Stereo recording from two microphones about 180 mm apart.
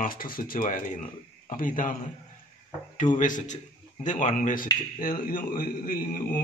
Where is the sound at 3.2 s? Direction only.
45° left (ahead or behind).